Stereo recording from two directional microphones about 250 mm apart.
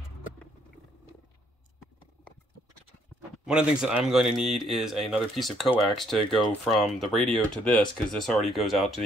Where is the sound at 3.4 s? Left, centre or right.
Centre.